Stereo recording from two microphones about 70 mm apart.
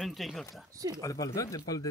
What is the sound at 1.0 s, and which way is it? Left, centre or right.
Speech, left.